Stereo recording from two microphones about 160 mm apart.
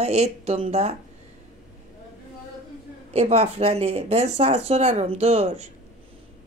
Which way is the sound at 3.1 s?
40° right (ahead or behind).